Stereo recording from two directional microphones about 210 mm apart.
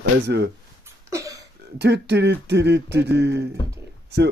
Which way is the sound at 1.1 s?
15° right (ahead or behind).